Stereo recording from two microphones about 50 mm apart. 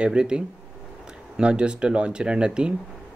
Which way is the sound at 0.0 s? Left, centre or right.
Centre.